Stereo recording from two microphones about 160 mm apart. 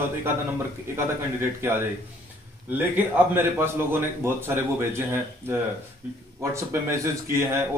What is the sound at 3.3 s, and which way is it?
A man's voice, 15° right (ahead or behind).